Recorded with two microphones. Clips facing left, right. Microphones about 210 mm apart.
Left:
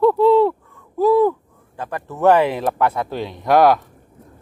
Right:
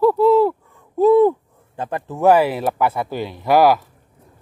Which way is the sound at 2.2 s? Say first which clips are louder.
Even; 10° right (ahead or behind).